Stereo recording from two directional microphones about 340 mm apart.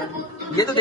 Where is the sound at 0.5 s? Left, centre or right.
Centre.